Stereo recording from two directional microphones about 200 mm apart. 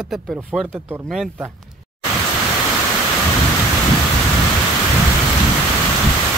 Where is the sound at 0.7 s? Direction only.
10° right (ahead or behind).